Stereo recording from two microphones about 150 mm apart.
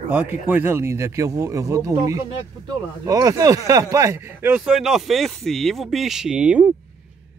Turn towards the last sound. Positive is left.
turn(degrees=-5)  # may be behind; listen again after turning